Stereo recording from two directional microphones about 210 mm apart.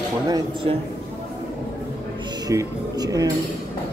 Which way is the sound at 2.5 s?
15° right (ahead or behind).